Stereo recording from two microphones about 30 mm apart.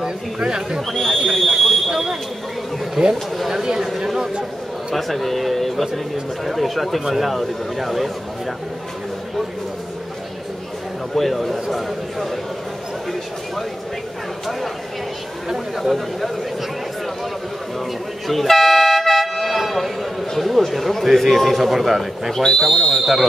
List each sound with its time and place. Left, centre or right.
0.0 s speech: right
0.9 s speech: centre
3.0 s speech: centre
4.9 s speech: centre
11.1 s speech: centre
15.4 s speech: centre
18.2 s toot: centre
19.4 s speech: centre
22.4 s speech: centre